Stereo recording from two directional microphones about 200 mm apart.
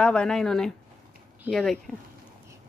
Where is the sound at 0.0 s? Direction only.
5° left (ahead or behind).